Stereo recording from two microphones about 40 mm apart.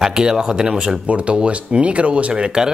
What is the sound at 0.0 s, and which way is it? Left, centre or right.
Speech, centre.